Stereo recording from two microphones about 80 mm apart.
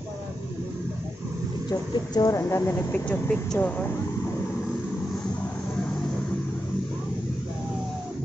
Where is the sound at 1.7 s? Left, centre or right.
Left.